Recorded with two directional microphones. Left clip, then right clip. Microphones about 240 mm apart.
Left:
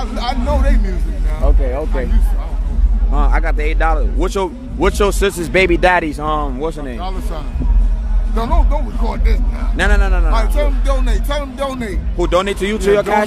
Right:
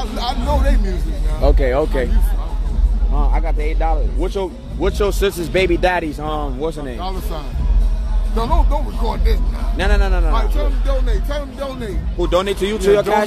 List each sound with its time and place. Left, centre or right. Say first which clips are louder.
0.0 s a sound: left 2 dB; centre
1.4 s speech: right 5 dB; right
3.2 s speech: left 5 dB; centre
8.4 s a man's voice: even; centre
10.6 s speech: left 4 dB; left
12.2 s speech: left 2 dB; centre